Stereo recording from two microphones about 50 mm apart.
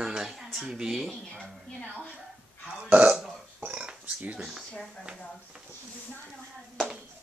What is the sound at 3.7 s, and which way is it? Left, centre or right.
Burping, centre.